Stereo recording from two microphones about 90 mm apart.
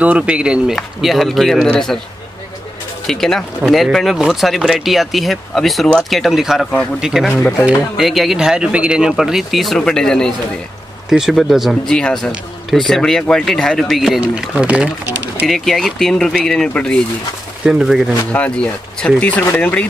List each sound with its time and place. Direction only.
0.0 s speech: 15° right (ahead or behind)
0.7 s speech: centre (ahead or behind)
3.1 s speech: 5° left (ahead or behind)
11.1 s speech: 5° right (ahead or behind)
14.2 s speech: 10° right (ahead or behind)
15.4 s speech: centre (ahead or behind)
17.6 s speech: 5° right (ahead or behind)
18.3 s speech: 15° left (ahead or behind)